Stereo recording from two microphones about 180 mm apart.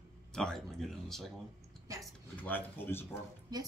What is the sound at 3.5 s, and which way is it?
Speech, 20° right (ahead or behind).